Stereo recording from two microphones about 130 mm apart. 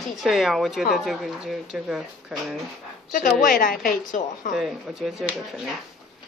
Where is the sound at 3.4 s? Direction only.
90° left.